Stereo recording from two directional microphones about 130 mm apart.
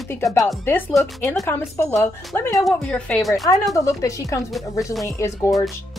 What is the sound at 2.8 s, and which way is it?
Speech, 10° left (ahead or behind).